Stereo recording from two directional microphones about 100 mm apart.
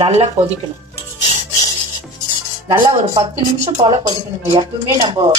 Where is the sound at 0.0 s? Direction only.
90° right.